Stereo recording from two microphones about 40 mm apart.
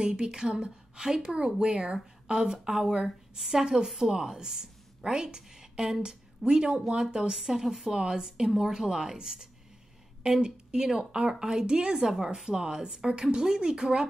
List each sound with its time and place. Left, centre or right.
0.0 s a woman's voice: right
7.9 s a woman's voice: centre